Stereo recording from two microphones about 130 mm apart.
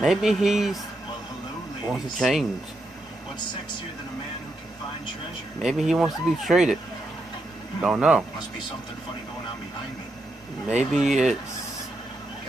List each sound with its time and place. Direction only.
0.0 s speech: centre (ahead or behind)
1.9 s speech: centre (ahead or behind)
5.6 s speech: 5° right (ahead or behind)
7.8 s speech: 10° right (ahead or behind)
10.7 s speech: 5° right (ahead or behind)